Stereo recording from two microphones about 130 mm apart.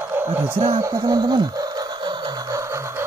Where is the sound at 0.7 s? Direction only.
25° right (ahead or behind).